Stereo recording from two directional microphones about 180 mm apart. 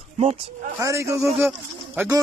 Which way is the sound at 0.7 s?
15° right (ahead or behind).